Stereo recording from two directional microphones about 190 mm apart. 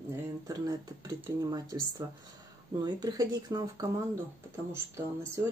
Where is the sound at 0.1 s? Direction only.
20° right (ahead or behind).